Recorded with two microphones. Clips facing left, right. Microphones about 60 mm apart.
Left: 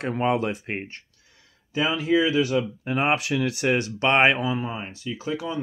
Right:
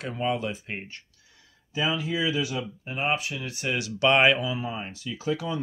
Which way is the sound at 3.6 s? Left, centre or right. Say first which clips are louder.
Right 1 dB; left.